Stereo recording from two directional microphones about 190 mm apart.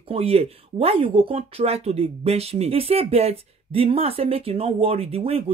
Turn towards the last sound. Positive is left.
turn(degrees=-30)  # may be behind; listen again after turning